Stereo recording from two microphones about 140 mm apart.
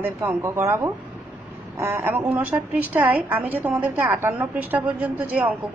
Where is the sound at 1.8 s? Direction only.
15° right (ahead or behind).